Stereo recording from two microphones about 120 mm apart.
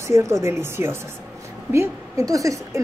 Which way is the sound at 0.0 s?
25° right (ahead or behind).